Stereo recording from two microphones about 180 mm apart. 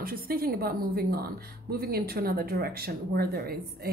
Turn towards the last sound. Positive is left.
turn(degrees=-60)  # may be behind; listen again after turning